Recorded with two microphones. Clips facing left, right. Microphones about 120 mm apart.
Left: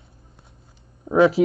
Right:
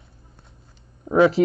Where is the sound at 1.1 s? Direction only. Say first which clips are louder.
Even; 5° left (ahead or behind).